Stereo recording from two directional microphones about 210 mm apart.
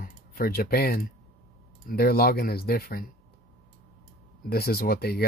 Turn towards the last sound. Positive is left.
turn(degrees=50)  # may be behind; listen again after turning